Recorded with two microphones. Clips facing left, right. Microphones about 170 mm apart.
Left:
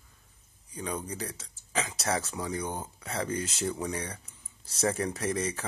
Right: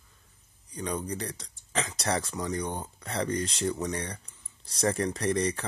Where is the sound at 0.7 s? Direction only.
5° left (ahead or behind).